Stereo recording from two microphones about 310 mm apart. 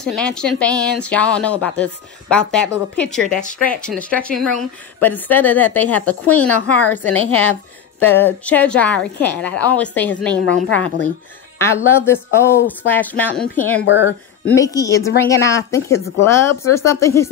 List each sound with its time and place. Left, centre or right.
0.0 s speech: centre
7.2 s a woman's voice: left
8.2 s speech: centre
13.8 s speech: left
14.4 s speech: centre